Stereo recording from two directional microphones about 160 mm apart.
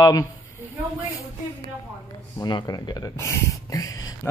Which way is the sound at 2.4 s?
25° left (ahead or behind).